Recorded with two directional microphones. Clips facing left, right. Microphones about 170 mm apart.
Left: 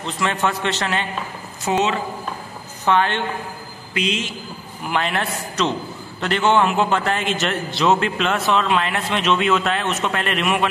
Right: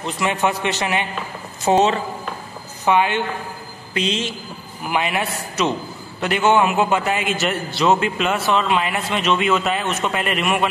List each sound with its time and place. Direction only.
0.0 s a man's voice: 15° right (ahead or behind)
1.7 s speech: 35° right (ahead or behind)
2.8 s a woman's voice: 10° right (ahead or behind)
3.9 s a man's voice: 30° right (ahead or behind)
4.8 s a man's voice: 10° right (ahead or behind)